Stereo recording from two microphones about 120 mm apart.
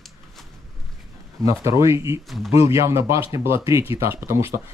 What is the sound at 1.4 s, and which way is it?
Speech, 25° right (ahead or behind).